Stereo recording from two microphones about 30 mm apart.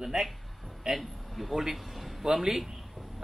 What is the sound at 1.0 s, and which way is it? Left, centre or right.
Speech, centre.